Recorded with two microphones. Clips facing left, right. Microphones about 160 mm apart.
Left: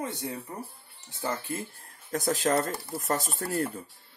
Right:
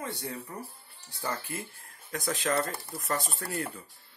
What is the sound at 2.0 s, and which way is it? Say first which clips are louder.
Speech: left 4 dB; 40° left (ahead or behind).